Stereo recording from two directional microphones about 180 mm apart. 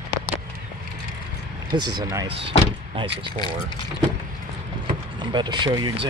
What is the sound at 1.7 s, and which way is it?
Speech, 25° right (ahead or behind).